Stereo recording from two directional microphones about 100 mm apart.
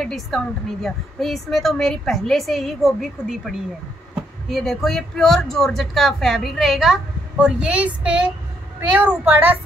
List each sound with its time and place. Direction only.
0.0 s a child's voice: centre (ahead or behind); by 9.6 s 20° right (ahead or behind)